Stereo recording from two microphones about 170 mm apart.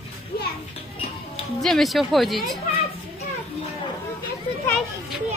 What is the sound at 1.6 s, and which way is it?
Speech, centre (ahead or behind).